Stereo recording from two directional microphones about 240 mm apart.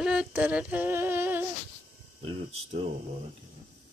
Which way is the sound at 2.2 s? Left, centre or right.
Right.